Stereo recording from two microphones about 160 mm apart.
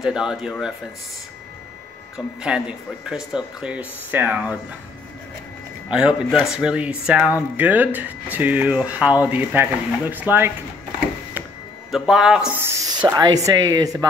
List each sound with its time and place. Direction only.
0.0 s speech: 5° right (ahead or behind)
2.1 s speech: 5° right (ahead or behind)
5.9 s a man's voice: 5° right (ahead or behind)
11.9 s speech: 5° right (ahead or behind)
12.6 s speech: 25° right (ahead or behind)